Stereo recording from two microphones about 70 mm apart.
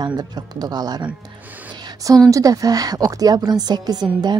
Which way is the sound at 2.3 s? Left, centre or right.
Right.